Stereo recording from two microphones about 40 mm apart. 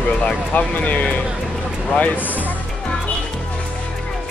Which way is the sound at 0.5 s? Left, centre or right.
Left.